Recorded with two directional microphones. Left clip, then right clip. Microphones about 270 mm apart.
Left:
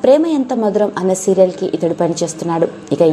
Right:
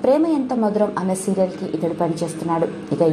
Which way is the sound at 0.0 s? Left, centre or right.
Left.